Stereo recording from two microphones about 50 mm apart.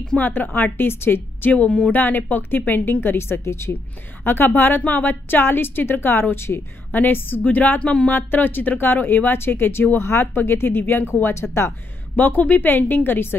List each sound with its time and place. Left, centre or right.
0.2 s a woman's voice: left
1.4 s a woman's voice: left
4.2 s a woman's voice: left
6.9 s a woman's voice: left
7.8 s a sound: left
8.1 s a woman's voice: left
9.9 s speech: left
10.3 s a woman's voice: left
11.4 s speech: centre
12.2 s speech: left